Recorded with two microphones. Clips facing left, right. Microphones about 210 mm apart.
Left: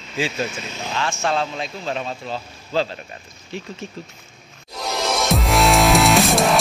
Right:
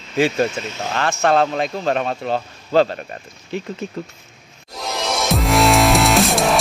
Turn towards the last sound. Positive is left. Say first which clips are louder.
# even
turn(degrees=0)  # may be behind; listen again after turning